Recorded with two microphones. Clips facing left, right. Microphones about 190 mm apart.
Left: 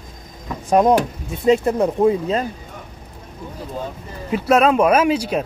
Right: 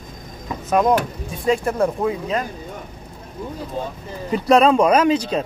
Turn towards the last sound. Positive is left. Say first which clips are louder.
# even
turn(degrees=10)  # may be behind; listen again after turning